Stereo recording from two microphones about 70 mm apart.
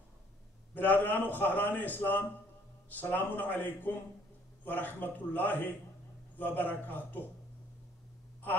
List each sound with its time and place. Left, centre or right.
0.7 s a man's voice: left